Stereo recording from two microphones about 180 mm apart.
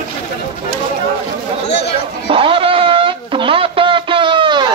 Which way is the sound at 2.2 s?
30° right (ahead or behind).